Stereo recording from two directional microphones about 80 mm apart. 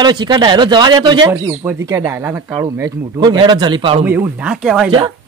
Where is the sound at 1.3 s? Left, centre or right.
Right.